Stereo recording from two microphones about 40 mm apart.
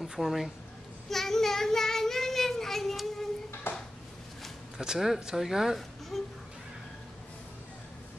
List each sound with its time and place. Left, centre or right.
0.0 s speech: centre
1.1 s child singing: centre
3.7 s dishes: left
4.7 s speech: centre
5.8 s a sound: centre